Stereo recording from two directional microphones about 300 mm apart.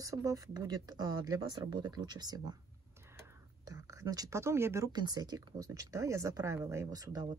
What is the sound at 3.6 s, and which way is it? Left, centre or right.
Speech, centre.